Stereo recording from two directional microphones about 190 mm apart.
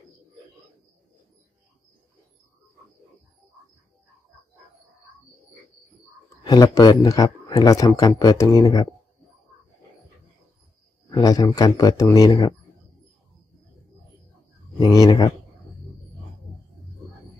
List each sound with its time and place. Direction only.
6.4 s a man's voice: 20° left (ahead or behind)
11.1 s a man's voice: 20° left (ahead or behind)
14.8 s a man's voice: 20° left (ahead or behind)